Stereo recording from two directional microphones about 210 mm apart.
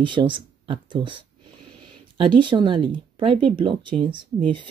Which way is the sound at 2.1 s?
25° right (ahead or behind).